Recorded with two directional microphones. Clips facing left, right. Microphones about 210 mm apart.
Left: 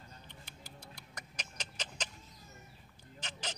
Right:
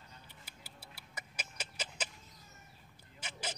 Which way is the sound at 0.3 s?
5° right (ahead or behind).